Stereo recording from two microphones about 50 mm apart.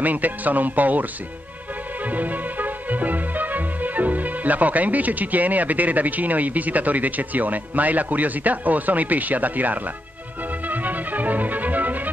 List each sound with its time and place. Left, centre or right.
0.0 s speech: right
2.0 s music: right